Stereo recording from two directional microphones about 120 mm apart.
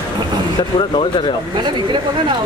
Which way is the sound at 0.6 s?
40° left (ahead or behind).